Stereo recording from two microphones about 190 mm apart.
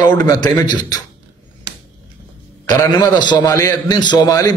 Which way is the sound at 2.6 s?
20° left (ahead or behind).